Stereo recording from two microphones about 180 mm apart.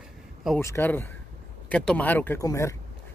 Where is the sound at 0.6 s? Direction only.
10° left (ahead or behind).